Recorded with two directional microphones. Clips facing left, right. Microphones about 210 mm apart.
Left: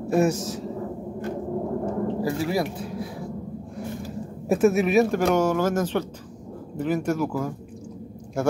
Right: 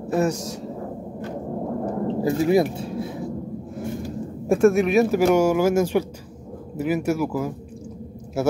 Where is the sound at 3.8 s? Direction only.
Centre (ahead or behind).